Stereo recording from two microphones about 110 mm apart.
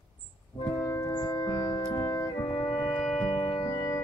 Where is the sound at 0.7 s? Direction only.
30° left (ahead or behind).